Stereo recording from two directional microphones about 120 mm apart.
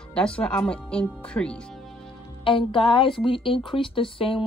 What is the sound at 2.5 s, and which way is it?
Speech, 45° left (ahead or behind).